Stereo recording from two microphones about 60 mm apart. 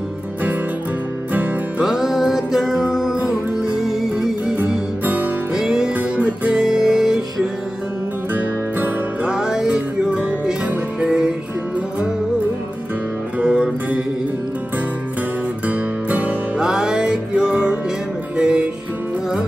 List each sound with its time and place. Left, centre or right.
1.8 s music: centre
4.6 s music: right
5.5 s music: centre
5.9 s music: right
8.3 s music: right
9.2 s music: centre
13.4 s music: centre
15.6 s music: right
16.5 s music: centre